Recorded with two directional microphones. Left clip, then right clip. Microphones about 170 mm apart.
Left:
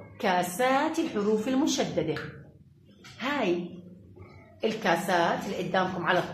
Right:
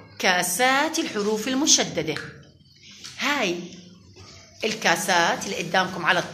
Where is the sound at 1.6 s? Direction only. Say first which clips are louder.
Right 6 dB; 20° right (ahead or behind).